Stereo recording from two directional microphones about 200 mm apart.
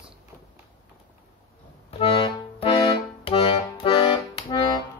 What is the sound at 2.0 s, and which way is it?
Accordion, 25° left (ahead or behind).